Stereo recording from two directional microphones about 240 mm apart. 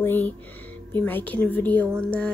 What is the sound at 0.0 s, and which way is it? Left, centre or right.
A woman's voice, centre.